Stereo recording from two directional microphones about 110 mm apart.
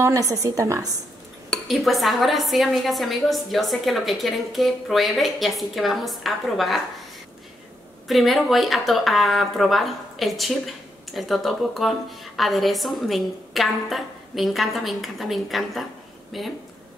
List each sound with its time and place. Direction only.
0.0 s speech: 30° right (ahead or behind)
1.5 s speech: centre (ahead or behind)
8.1 s speech: centre (ahead or behind)